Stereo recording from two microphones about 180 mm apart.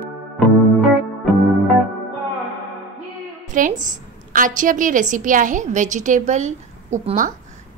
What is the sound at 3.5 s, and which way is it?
A woman's voice, 45° right (ahead or behind).